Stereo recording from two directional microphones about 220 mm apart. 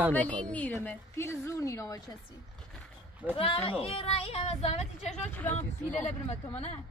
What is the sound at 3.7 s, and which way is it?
Speech, 25° left (ahead or behind).